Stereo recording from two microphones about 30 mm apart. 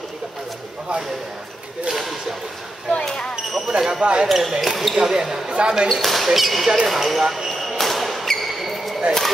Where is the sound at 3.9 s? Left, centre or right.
Right.